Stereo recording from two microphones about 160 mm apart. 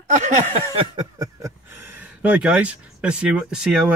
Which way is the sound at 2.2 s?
5° right (ahead or behind).